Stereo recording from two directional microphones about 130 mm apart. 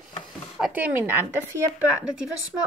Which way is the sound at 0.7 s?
15° right (ahead or behind).